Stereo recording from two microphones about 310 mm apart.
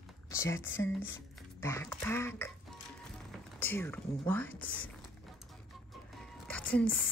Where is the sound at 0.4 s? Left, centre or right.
Centre.